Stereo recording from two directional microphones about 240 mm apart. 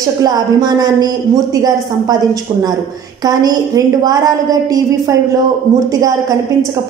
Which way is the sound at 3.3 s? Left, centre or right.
Centre.